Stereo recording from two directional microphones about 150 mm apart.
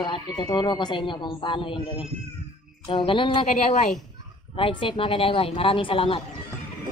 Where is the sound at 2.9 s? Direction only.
35° left (ahead or behind).